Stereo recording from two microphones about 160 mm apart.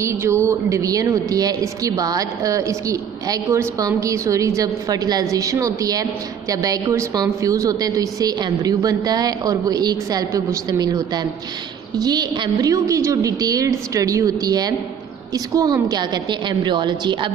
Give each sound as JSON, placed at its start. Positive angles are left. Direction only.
{"t": 0.0, "sound": "a woman's voice", "side_deg": -15}